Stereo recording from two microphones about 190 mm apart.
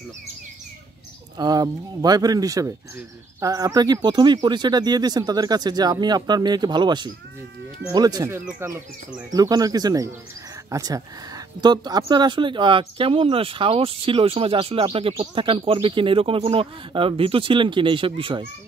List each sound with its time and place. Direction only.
1.4 s speech: 20° right (ahead or behind)